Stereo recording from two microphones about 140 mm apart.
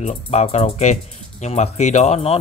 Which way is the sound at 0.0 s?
50° left (ahead or behind).